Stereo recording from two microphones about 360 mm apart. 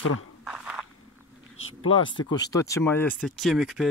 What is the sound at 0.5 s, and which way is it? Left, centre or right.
Walk, centre.